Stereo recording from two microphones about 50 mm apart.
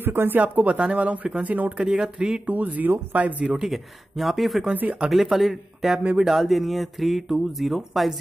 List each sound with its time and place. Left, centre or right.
0.0 s speech: right
0.4 s speech: right
1.8 s speech: centre
2.4 s speech: right
3.6 s speech: centre
6.0 s speech: centre
6.3 s speech: centre